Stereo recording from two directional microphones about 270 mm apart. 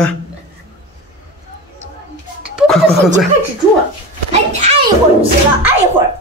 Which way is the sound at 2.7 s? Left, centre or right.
Centre.